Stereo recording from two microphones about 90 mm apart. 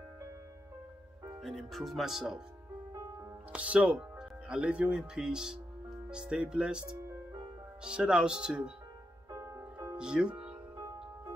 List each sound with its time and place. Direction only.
1.4 s speech: centre (ahead or behind)
3.5 s speech: 15° right (ahead or behind)
9.3 s music: 35° right (ahead or behind)
9.9 s speech: 10° right (ahead or behind)